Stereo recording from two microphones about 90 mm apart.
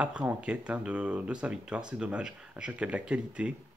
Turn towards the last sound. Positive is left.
turn(degrees=-10)  # may be behind; listen again after turning